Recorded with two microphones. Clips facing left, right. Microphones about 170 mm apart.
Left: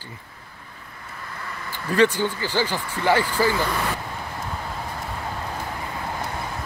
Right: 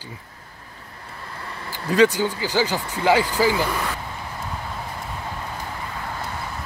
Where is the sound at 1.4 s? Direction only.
30° right (ahead or behind).